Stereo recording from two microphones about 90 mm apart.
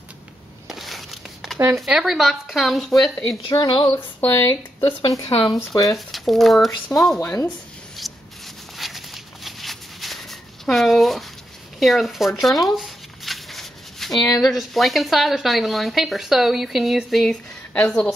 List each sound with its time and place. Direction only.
0.7 s a sound: centre (ahead or behind)
1.8 s speech: 5° right (ahead or behind)
3.6 s a sound: 55° left (ahead or behind)
4.3 s speech: 35° left (ahead or behind)
5.2 s speech: 90° left
5.7 s speech: 35° left (ahead or behind)
5.9 s speech: centre (ahead or behind)
8.0 s rub: centre (ahead or behind)
8.7 s a sound: centre (ahead or behind)
11.8 s shuffling cards: centre (ahead or behind)
14.4 s speech: centre (ahead or behind)